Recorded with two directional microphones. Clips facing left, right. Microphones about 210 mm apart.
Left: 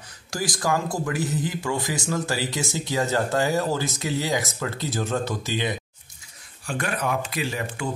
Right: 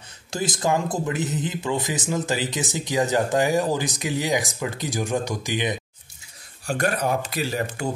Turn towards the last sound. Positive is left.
turn(degrees=-40)  # may be behind; listen again after turning